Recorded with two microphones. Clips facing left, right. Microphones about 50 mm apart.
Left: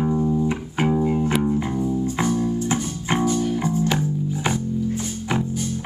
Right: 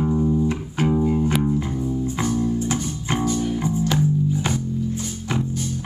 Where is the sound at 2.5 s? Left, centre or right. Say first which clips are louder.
Even; left.